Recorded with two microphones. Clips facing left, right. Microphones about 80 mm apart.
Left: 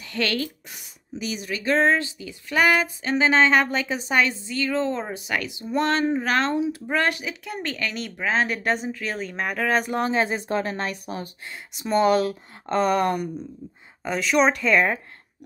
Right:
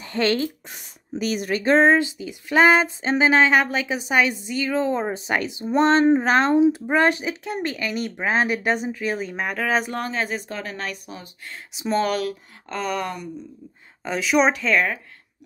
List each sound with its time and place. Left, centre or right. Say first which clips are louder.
0.0 s speech: right 4 dB; right
1.1 s speech: right 6 dB; right
1.6 s speech: right 4 dB; right
1.9 s a woman's voice: right 4 dB; centre
3.3 s a woman's voice: right 1 dB; centre
7.7 s speech: right 3 dB; centre
9.9 s speech: left 3 dB; left
10.5 s speech: left 5 dB; left
11.7 s speech: even; centre
12.1 s speech: left 4 dB; left
14.0 s speech: right 1 dB; centre